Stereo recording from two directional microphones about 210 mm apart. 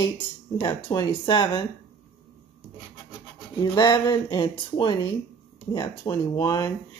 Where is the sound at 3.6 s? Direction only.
20° left (ahead or behind).